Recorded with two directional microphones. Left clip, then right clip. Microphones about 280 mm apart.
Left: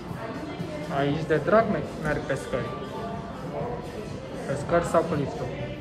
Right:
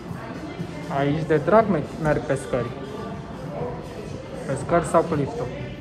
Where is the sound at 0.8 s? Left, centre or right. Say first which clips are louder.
Right 3 dB; centre.